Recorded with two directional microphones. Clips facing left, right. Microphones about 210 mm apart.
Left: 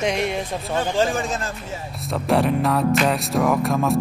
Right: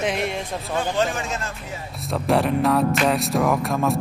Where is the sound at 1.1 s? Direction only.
35° left (ahead or behind).